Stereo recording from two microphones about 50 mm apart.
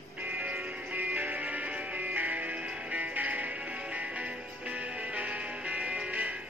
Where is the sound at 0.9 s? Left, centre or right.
Right.